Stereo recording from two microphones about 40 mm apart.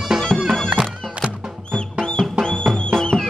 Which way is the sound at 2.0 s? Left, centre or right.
Left.